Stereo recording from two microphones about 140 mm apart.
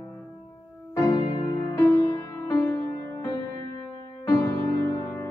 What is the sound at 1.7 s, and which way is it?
Music, 20° left (ahead or behind).